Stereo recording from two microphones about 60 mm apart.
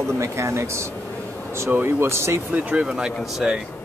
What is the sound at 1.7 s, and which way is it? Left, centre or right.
Speech, right.